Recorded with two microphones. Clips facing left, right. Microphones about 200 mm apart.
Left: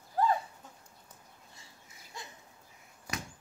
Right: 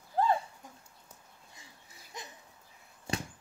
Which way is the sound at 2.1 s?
20° right (ahead or behind).